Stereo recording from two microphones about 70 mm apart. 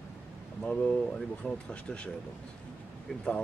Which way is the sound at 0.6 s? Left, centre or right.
Centre.